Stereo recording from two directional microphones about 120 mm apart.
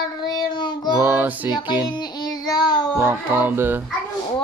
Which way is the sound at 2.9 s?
20° right (ahead or behind).